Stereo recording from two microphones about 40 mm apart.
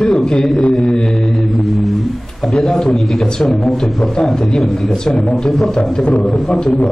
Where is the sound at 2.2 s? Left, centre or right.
Centre.